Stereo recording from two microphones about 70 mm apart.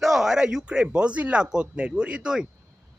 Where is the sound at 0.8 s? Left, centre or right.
Centre.